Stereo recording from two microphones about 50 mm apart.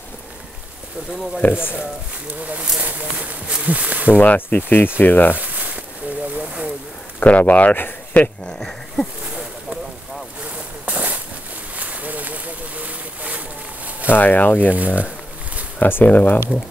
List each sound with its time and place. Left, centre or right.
1.4 s speech: left
2.8 s speech: right
4.2 s speech: left
5.3 s a sound: right
6.3 s a sound: right
7.2 s speech: left
7.7 s speech: left
8.5 s speech: centre
9.2 s a sound: centre
10.4 s vehicle: right
11.7 s a sound: right
14.1 s speech: left
14.7 s speech: right
15.8 s speech: left